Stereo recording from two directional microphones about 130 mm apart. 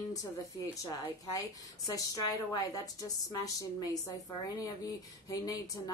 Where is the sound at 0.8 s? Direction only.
30° left (ahead or behind).